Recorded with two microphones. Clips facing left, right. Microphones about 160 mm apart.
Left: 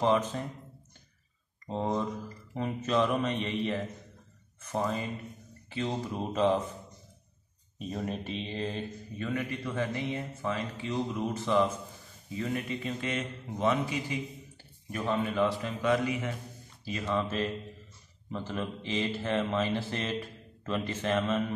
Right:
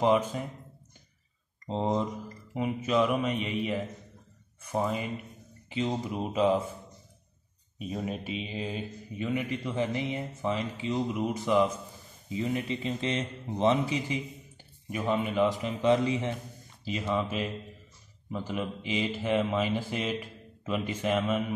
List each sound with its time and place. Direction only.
0.0 s speech: 10° right (ahead or behind)
1.7 s speech: 20° right (ahead or behind)
7.8 s speech: 5° right (ahead or behind)